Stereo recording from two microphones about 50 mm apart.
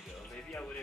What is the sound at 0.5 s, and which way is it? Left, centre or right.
Speech, left.